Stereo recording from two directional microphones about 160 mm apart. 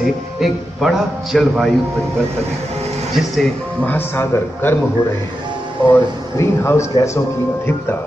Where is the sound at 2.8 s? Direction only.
45° right (ahead or behind).